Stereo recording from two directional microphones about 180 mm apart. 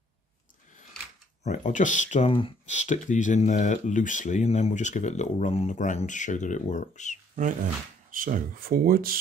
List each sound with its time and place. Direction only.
1.4 s speech: 40° left (ahead or behind)
8.1 s speech: 50° right (ahead or behind)